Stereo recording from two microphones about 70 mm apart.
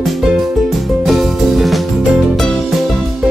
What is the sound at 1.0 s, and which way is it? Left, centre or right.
Music, centre.